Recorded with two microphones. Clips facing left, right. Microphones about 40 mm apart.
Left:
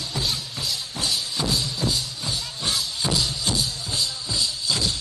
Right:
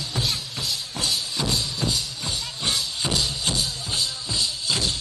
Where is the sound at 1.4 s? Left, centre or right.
Right.